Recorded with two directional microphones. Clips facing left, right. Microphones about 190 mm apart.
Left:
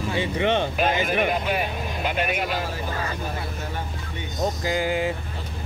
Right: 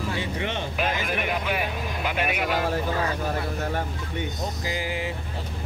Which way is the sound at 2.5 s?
55° right (ahead or behind).